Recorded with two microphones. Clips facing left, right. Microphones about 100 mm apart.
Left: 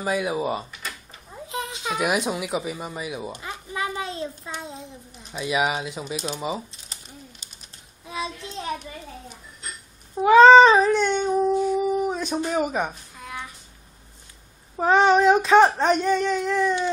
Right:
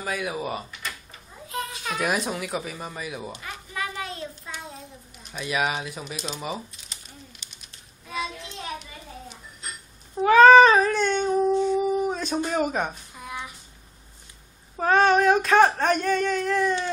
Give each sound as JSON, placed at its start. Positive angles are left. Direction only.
{"t": 0.0, "sound": "speech", "side_deg": 20}
{"t": 3.4, "sound": "a sound", "side_deg": 25}
{"t": 5.3, "sound": "child singing", "side_deg": 10}
{"t": 10.1, "sound": "cat", "side_deg": 20}
{"t": 12.4, "sound": "child singing", "side_deg": 10}
{"t": 13.1, "sound": "a sound", "side_deg": -20}
{"t": 14.8, "sound": "child singing", "side_deg": 20}